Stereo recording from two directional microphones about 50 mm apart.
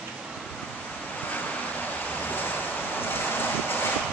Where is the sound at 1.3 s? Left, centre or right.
Left.